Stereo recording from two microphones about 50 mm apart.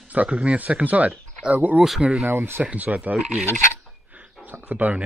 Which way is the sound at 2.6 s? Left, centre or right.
Right.